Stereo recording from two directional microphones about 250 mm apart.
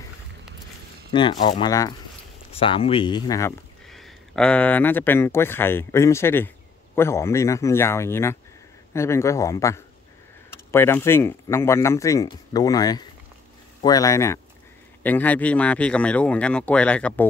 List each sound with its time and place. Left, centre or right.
1.1 s speech: centre
3.8 s speech: centre